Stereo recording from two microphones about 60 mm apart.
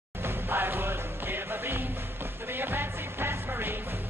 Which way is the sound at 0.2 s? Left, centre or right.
Right.